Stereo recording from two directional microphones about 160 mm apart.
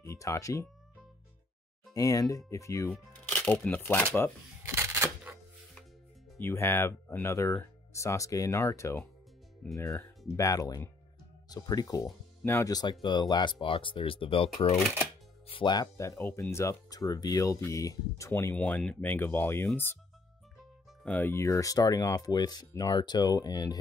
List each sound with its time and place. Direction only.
0.0 s speech: 20° left (ahead or behind)
2.0 s speech: 20° left (ahead or behind)
2.9 s speech: 10° left (ahead or behind)
4.6 s a sound: 15° right (ahead or behind)
6.4 s speech: 15° left (ahead or behind)
21.0 s speech: 10° left (ahead or behind)